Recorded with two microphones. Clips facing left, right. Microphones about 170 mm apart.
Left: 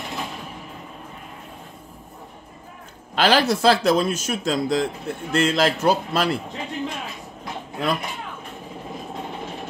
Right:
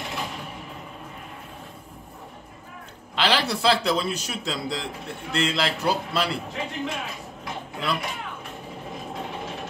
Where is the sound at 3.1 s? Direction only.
45° left (ahead or behind).